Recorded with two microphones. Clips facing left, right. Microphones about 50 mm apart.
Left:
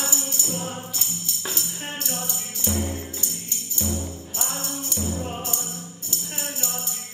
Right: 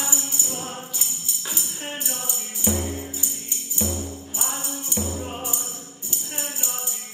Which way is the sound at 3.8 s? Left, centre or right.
Centre.